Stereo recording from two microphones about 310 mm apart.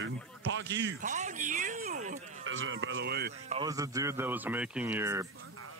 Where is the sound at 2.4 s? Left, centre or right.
Right.